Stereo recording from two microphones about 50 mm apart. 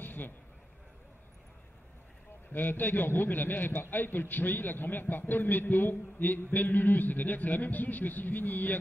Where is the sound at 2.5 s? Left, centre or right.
Left.